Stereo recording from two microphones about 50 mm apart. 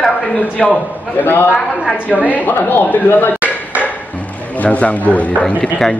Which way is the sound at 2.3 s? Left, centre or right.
Left.